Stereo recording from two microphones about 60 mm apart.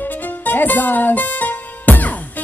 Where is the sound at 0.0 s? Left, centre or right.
Left.